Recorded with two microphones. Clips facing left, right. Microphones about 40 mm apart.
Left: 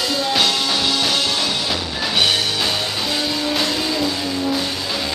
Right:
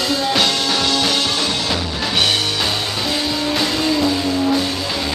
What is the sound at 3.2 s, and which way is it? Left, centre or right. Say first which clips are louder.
Music: right 1 dB; centre.